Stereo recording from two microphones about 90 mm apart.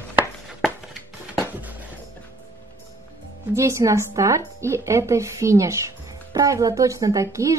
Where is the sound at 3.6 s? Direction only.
35° right (ahead or behind).